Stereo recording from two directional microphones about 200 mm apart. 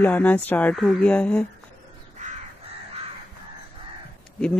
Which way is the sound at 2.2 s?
35° right (ahead or behind).